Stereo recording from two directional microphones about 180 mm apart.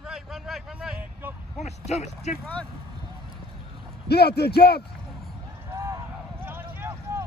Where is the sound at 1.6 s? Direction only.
40° left (ahead or behind).